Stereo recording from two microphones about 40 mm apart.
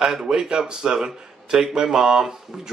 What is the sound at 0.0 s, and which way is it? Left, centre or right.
Speech, centre.